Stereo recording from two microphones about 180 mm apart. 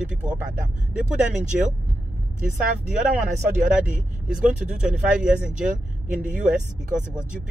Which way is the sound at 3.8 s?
5° right (ahead or behind).